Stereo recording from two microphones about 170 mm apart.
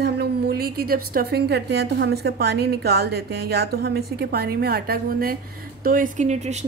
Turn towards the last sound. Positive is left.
turn(degrees=-40)  # may be behind; listen again after turning